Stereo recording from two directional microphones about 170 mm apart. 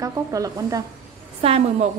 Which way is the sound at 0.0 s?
20° right (ahead or behind).